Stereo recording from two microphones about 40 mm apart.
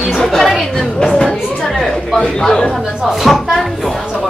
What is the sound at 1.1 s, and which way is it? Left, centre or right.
Speech, centre.